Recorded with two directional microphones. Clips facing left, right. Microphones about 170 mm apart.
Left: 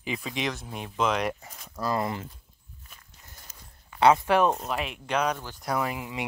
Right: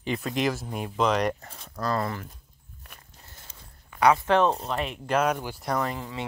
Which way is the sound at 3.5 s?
30° right (ahead or behind).